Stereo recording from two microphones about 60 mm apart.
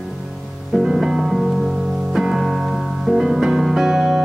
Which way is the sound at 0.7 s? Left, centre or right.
Centre.